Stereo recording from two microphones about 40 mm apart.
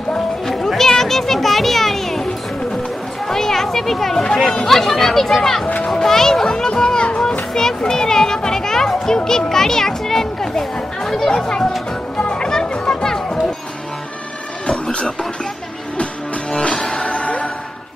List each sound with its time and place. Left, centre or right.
0.7 s children playing: centre
3.3 s a child's voice: centre
12.2 s music: left
14.7 s a sound: left
16.5 s music: centre